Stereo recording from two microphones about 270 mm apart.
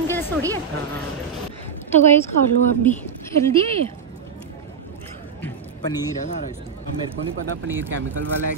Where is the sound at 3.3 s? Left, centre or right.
Centre.